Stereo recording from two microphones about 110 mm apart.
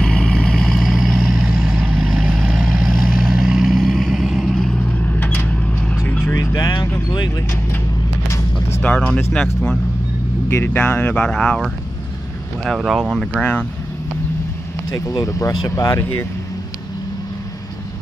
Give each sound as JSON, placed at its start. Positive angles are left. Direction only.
{"t": 0.0, "sound": "vehicle", "side_deg": 10}
{"t": 5.0, "sound": "mechanisms", "side_deg": 15}
{"t": 6.2, "sound": "music", "side_deg": 30}
{"t": 8.8, "sound": "speech", "side_deg": 10}
{"t": 11.2, "sound": "speech", "side_deg": 5}
{"t": 13.4, "sound": "speech", "side_deg": 15}
{"t": 14.9, "sound": "speech", "side_deg": 35}